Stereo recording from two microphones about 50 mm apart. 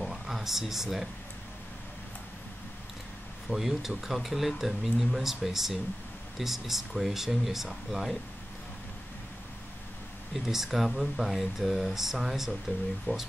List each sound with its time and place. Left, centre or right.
0.0 s a sound: centre
3.4 s speech: centre
10.3 s speech: centre